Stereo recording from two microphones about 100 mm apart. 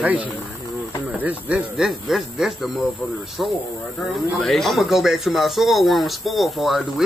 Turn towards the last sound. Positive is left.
turn(degrees=0)  # may be behind; listen again after turning